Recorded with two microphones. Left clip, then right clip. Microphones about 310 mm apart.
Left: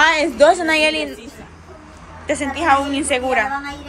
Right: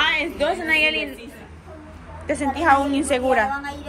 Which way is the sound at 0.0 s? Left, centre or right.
Left.